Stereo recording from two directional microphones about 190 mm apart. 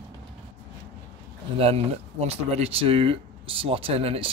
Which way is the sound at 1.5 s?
30° right (ahead or behind).